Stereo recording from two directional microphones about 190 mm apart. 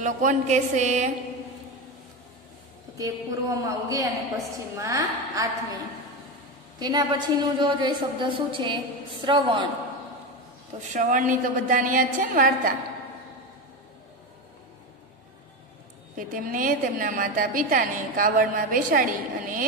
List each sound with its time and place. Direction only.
0.0 s a woman's voice: 40° right (ahead or behind)
3.0 s a woman's voice: 15° right (ahead or behind)
6.8 s a woman's voice: 20° right (ahead or behind)
10.9 s a woman's voice: 45° right (ahead or behind)
16.2 s a woman's voice: 45° right (ahead or behind)